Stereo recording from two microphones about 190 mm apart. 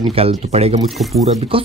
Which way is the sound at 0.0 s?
30° right (ahead or behind).